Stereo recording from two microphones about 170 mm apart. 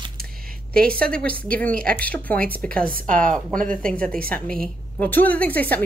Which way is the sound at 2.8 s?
55° right (ahead or behind).